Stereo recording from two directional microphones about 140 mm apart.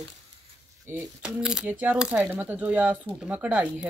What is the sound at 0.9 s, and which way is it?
Speech, 15° right (ahead or behind).